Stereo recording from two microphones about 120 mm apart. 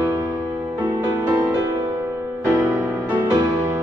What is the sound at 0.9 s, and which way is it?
Music, 30° right (ahead or behind).